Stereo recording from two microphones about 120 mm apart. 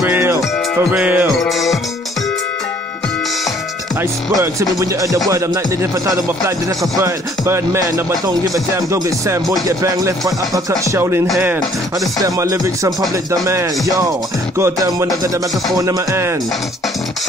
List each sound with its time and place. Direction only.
0.0 s music: 15° right (ahead or behind)
1.4 s music: centre (ahead or behind)
4.4 s speech: 25° right (ahead or behind)